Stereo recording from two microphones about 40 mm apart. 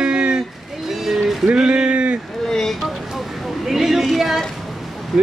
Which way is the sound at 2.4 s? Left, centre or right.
Centre.